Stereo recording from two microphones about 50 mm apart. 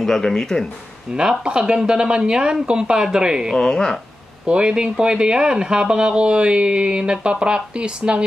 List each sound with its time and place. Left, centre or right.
0.0 s speech: centre
1.1 s speech: centre
3.5 s speech: centre
4.5 s speech: centre